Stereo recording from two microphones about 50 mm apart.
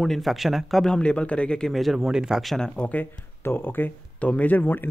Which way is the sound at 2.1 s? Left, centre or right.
Centre.